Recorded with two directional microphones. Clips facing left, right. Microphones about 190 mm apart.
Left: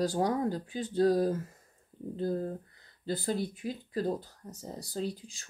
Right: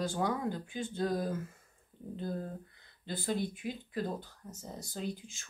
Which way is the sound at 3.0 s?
40° left (ahead or behind).